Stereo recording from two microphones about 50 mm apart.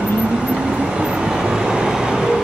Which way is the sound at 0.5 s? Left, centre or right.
Centre.